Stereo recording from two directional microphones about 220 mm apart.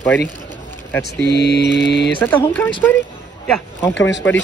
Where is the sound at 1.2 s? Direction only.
50° left (ahead or behind).